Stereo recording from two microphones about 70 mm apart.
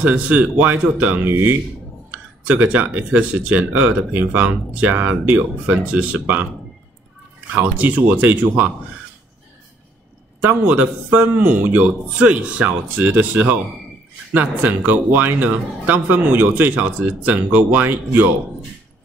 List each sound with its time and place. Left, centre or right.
0.0 s speech: right
7.6 s speech: right
10.4 s speech: right